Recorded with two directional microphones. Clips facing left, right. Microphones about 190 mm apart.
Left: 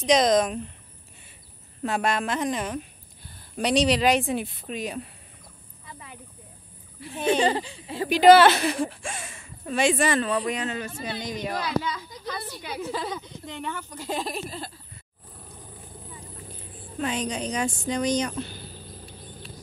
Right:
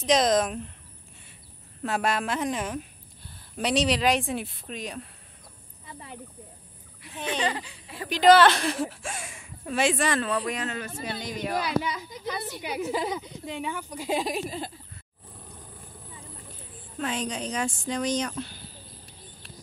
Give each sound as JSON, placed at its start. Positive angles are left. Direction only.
{"t": 0.0, "sound": "a woman's voice", "side_deg": 0}
{"t": 1.8, "sound": "a woman's voice", "side_deg": 0}
{"t": 5.9, "sound": "a sound", "side_deg": -30}
{"t": 7.2, "sound": "speech", "side_deg": 30}
{"t": 8.1, "sound": "a woman's voice", "side_deg": 10}
{"t": 15.4, "sound": "vehicle", "side_deg": 10}
{"t": 17.0, "sound": "a woman's voice", "side_deg": 0}